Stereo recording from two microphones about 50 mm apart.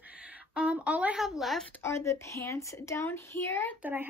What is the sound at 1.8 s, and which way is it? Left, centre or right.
A woman's voice, left.